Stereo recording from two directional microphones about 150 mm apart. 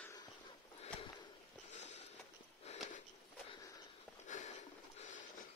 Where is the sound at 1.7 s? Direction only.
50° left (ahead or behind).